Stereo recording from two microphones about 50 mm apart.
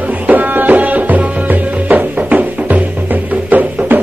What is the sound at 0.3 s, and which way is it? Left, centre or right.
Music, right.